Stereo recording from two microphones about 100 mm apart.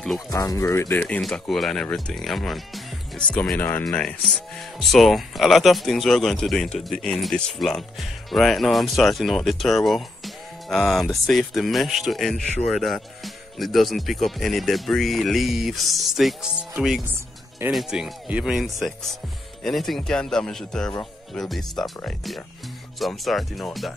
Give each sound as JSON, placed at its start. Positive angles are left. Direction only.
{"t": 0.3, "sound": "speech", "side_deg": 35}
{"t": 1.2, "sound": "speech", "side_deg": 0}
{"t": 3.3, "sound": "speech", "side_deg": 10}
{"t": 3.9, "sound": "speech", "side_deg": 5}